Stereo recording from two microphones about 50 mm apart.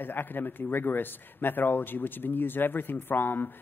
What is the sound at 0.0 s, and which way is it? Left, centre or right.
Speech, left.